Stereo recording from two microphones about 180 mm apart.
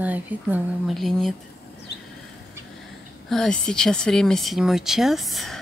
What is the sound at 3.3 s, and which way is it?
Speech, 5° left (ahead or behind).